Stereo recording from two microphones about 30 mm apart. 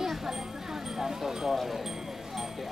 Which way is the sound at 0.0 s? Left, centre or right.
Centre.